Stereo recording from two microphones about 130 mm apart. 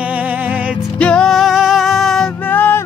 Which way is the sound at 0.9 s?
10° left (ahead or behind).